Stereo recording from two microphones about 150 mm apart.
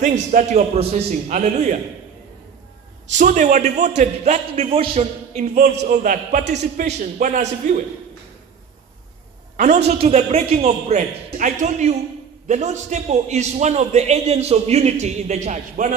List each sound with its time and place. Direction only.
0.0 s a man's voice: 55° right (ahead or behind)
3.1 s a man's voice: 55° right (ahead or behind)
9.6 s a man's voice: 60° right (ahead or behind)
9.9 s a man's voice: 45° right (ahead or behind)
11.2 s a man's voice: 60° right (ahead or behind)